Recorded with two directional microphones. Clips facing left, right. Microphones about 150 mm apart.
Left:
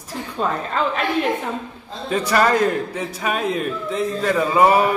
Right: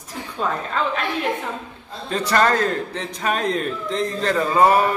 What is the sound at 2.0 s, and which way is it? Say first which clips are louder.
Speech: left 1 dB; 10° left (ahead or behind).